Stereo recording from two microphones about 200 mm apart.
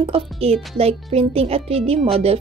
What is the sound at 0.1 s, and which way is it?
A woman's voice, 30° right (ahead or behind).